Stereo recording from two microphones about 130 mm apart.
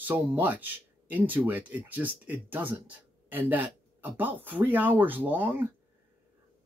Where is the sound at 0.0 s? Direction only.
15° right (ahead or behind).